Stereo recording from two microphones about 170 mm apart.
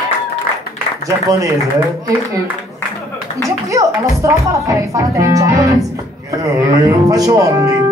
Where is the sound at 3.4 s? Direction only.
20° right (ahead or behind).